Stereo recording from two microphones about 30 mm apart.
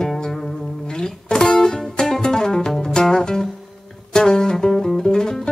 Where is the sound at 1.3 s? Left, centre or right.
Left.